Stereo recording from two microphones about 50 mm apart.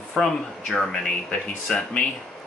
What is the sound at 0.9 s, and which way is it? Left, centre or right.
Speech, centre.